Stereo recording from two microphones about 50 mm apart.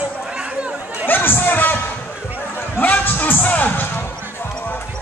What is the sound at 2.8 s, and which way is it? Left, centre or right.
Speech, left.